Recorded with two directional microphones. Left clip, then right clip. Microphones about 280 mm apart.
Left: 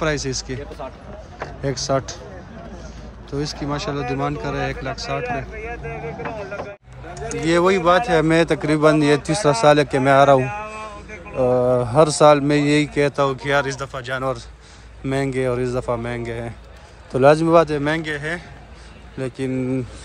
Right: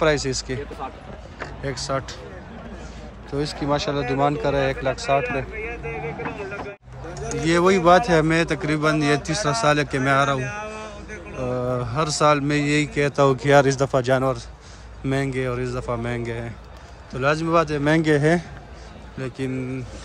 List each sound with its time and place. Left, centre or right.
0.0 s a man's voice: centre
1.6 s a man's voice: centre
3.3 s a man's voice: centre
5.2 s vehicle: left
7.4 s a man's voice: centre
19.1 s speech: centre